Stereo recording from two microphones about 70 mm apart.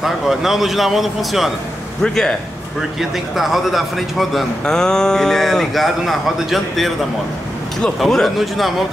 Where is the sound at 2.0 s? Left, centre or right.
Centre.